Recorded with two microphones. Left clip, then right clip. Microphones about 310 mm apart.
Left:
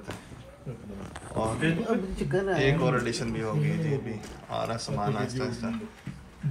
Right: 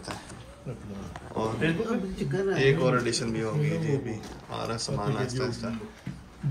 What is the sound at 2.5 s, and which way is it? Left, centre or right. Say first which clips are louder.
Speech: right 3 dB; centre.